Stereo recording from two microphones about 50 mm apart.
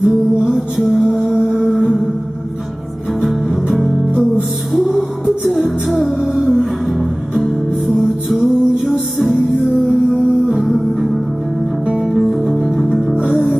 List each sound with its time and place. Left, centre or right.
0.0 s music: centre
3.2 s music: centre
5.2 s music: centre
5.9 s music: centre
7.3 s music: right
8.0 s music: centre
8.9 s music: right
10.6 s music: centre
12.1 s music: centre
13.2 s music: right